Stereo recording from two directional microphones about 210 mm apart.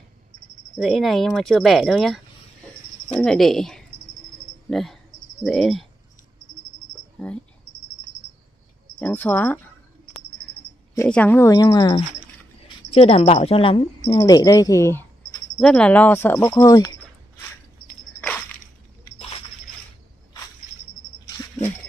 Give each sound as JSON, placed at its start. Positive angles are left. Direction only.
{"t": 0.7, "sound": "speech", "side_deg": 0}
{"t": 4.6, "sound": "cricket", "side_deg": 0}
{"t": 5.4, "sound": "speech", "side_deg": 0}
{"t": 7.2, "sound": "speech", "side_deg": 5}
{"t": 9.0, "sound": "speech", "side_deg": 10}
{"t": 11.0, "sound": "speech", "side_deg": 5}
{"t": 12.9, "sound": "a woman's voice", "side_deg": 30}
{"t": 17.8, "sound": "a sound", "side_deg": 5}